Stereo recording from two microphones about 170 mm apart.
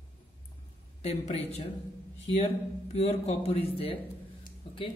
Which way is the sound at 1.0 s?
40° left (ahead or behind).